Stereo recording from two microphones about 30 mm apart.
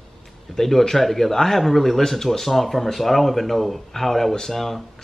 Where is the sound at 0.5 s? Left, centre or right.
Centre.